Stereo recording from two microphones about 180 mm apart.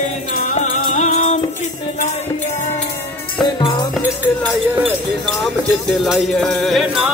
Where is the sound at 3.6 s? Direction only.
25° left (ahead or behind).